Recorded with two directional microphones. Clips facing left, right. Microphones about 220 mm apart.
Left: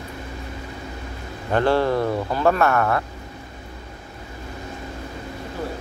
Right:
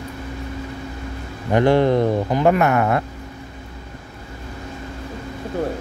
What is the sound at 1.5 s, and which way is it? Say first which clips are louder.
Speech: right 4 dB; 15° right (ahead or behind).